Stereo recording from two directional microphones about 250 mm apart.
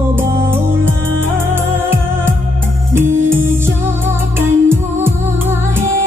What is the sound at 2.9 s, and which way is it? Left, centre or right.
Music, centre.